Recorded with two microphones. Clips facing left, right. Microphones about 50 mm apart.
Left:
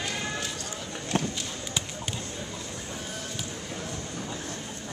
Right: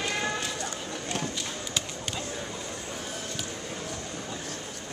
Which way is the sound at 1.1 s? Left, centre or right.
Left.